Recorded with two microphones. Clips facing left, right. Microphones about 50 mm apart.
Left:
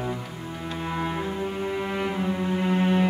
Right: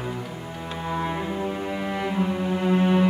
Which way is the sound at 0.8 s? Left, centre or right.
Centre.